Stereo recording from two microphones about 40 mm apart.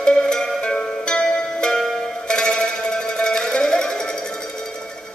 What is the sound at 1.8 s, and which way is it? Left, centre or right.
Music, centre.